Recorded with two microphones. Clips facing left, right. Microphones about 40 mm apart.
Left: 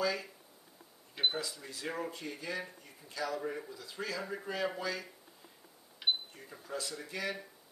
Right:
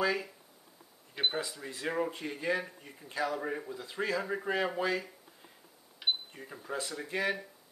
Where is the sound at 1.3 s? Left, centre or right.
Right.